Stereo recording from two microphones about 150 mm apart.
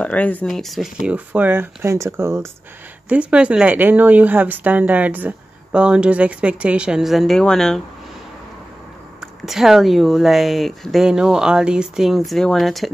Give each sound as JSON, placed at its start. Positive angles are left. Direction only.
{"t": 0.0, "sound": "speech", "side_deg": 10}
{"t": 1.0, "sound": "speech", "side_deg": -10}
{"t": 9.2, "sound": "speech", "side_deg": -5}